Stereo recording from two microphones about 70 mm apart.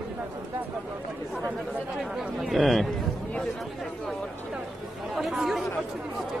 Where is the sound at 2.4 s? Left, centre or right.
Centre.